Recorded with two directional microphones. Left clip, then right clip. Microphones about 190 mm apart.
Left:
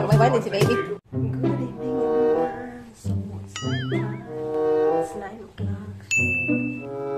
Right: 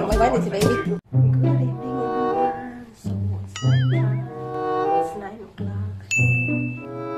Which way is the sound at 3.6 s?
Centre (ahead or behind).